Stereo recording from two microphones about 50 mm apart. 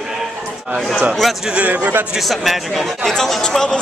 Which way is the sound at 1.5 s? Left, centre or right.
Right.